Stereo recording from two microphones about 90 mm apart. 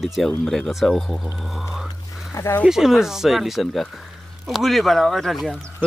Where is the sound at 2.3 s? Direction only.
35° left (ahead or behind).